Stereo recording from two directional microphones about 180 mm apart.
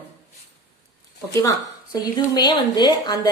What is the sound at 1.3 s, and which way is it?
A woman's voice, 15° left (ahead or behind).